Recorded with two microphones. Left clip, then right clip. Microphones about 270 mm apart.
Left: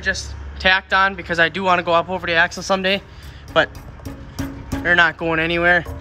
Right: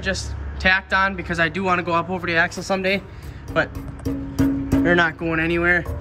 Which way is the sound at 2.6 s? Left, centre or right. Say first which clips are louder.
Left 4 dB; left.